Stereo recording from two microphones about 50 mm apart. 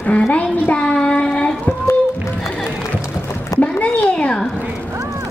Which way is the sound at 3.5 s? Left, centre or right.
Left.